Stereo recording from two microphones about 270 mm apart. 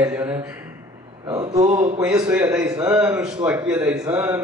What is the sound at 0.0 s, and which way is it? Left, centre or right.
A man's voice, centre.